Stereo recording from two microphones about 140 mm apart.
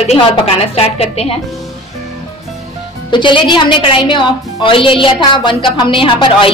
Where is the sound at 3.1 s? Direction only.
35° left (ahead or behind).